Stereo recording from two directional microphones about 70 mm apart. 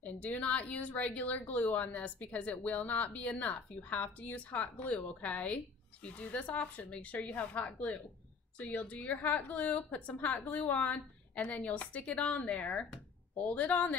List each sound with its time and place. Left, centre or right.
0.0 s a woman's voice: centre